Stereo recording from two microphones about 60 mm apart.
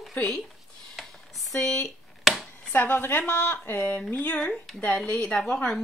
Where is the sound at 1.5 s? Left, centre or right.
Centre.